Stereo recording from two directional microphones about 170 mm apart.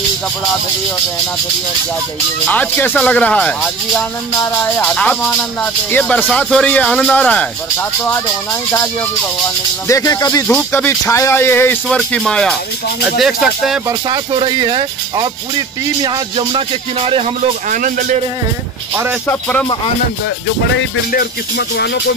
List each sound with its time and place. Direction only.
2.4 s speech: 10° left (ahead or behind)
9.8 s speech: 20° left (ahead or behind); by 13.7 s centre (ahead or behind)
13.8 s speech: 25° right (ahead or behind)
17.6 s speech: 50° right (ahead or behind)
21.1 s speech: 65° left (ahead or behind)